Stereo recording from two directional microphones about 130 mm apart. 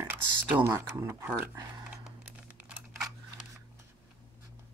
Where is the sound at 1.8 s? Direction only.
10° right (ahead or behind).